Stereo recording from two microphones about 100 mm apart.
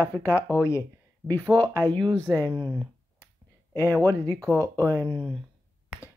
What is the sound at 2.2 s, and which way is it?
Speech, 40° right (ahead or behind).